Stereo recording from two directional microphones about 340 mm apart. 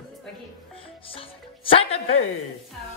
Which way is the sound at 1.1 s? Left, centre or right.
Centre.